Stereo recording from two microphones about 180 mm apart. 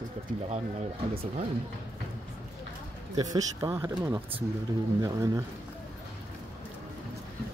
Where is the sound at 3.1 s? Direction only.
20° right (ahead or behind).